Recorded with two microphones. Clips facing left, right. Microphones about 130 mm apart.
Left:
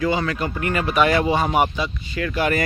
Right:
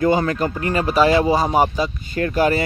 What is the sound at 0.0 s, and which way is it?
Speech, 45° right (ahead or behind).